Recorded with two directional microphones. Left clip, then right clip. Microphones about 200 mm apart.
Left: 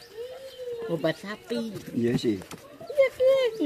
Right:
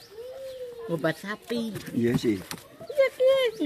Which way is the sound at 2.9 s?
15° right (ahead or behind).